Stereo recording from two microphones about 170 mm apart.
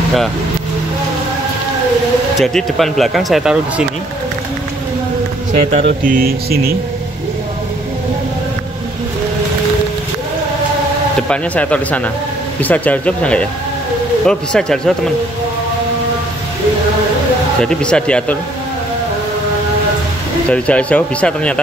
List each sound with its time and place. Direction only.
2.3 s speech: centre (ahead or behind)
5.5 s speech: 45° right (ahead or behind); by 6.7 s 60° right (ahead or behind)
11.2 s speech: 10° left (ahead or behind)
17.6 s speech: 5° left (ahead or behind)
20.4 s speech: 5° left (ahead or behind)